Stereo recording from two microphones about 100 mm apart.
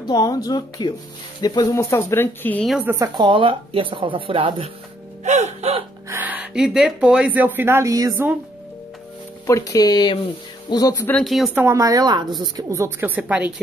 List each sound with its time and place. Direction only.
0.0 s speech: 40° left (ahead or behind)
1.8 s speech: 30° left (ahead or behind)
2.8 s speech: 20° right (ahead or behind)
3.2 s speech: 55° right (ahead or behind)
5.3 s gasp: 90° right
6.2 s speech: 15° right (ahead or behind)
7.9 s speech: 35° right (ahead or behind)
9.5 s speech: 35° left (ahead or behind)
11.2 s speech: centre (ahead or behind)
11.5 s speech: 30° right (ahead or behind)
12.7 s speech: 20° right (ahead or behind)